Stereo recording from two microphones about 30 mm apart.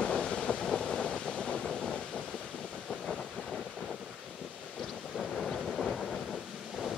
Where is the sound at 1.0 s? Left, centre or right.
Left.